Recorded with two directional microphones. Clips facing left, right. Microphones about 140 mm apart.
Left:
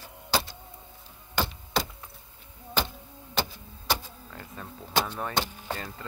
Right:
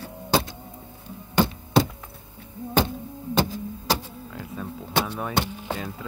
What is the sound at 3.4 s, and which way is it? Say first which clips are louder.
Music: right 7 dB; 40° right (ahead or behind).